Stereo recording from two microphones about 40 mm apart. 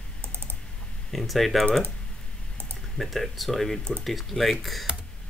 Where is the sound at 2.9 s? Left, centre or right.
Centre.